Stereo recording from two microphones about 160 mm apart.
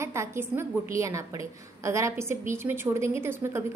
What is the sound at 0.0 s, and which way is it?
A woman's voice, 15° right (ahead or behind).